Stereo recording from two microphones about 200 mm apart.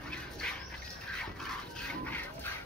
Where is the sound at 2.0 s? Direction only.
10° left (ahead or behind).